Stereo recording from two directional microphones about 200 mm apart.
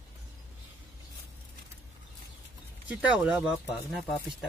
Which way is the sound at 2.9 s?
5° right (ahead or behind).